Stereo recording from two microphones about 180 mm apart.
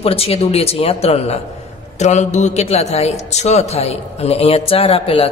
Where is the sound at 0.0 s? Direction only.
35° left (ahead or behind).